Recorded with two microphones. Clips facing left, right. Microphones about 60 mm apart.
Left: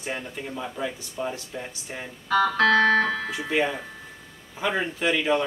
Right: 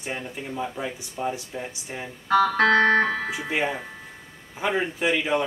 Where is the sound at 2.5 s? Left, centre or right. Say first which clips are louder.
Left 2 dB; right.